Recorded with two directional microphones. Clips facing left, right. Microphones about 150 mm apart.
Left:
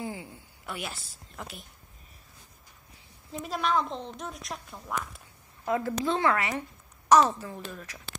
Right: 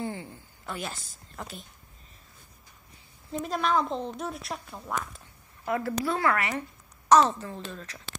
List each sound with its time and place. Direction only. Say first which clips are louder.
0.0 s a sound: right 2 dB; 5° left (ahead or behind)
3.3 s a woman's voice: right 2 dB; centre (ahead or behind)
5.7 s a woman's voice: left 1 dB; 15° left (ahead or behind)